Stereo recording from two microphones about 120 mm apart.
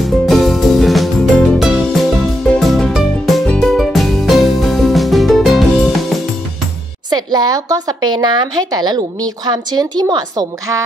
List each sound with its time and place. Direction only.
0.0 s music: centre (ahead or behind)
7.1 s speech: 35° right (ahead or behind)